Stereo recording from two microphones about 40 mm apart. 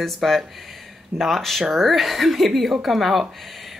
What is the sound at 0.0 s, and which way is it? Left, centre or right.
Speech, centre.